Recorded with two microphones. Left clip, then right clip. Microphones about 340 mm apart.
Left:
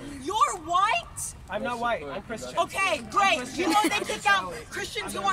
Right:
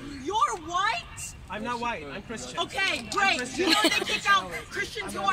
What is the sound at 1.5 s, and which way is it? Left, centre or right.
Speech, left.